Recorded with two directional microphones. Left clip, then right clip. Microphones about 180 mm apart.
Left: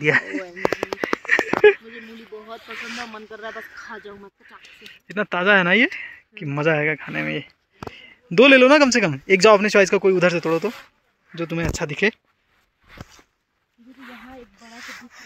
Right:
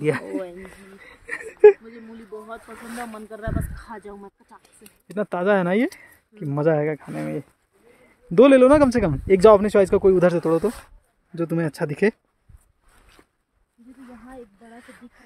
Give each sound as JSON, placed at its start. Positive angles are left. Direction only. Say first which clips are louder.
{"t": 0.0, "sound": "speech", "louder": "left 5 dB", "side_deg": -5}
{"t": 1.2, "sound": "a sound", "louder": "right 1 dB", "side_deg": -10}
{"t": 3.0, "sound": "speech", "louder": "left 1 dB", "side_deg": -40}
{"t": 3.4, "sound": "speech", "louder": "right 1 dB", "side_deg": -30}
{"t": 5.1, "sound": "speech", "louder": "left 3 dB", "side_deg": -15}
{"t": 7.1, "sound": "speech", "louder": "left 4 dB", "side_deg": -5}
{"t": 10.1, "sound": "speech", "louder": "even", "side_deg": -25}
{"t": 11.3, "sound": "speech", "louder": "even", "side_deg": -40}